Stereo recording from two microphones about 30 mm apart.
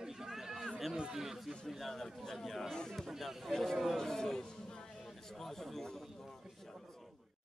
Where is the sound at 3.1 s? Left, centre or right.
Centre.